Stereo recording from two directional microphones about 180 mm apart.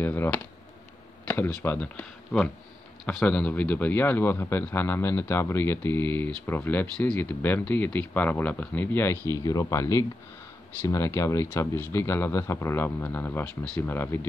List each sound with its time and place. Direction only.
0.0 s speech: 10° left (ahead or behind)